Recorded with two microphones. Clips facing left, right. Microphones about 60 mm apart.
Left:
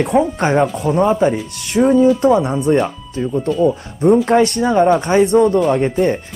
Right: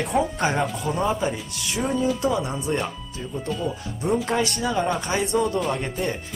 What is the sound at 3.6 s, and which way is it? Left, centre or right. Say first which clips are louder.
Speech: left 13 dB; left.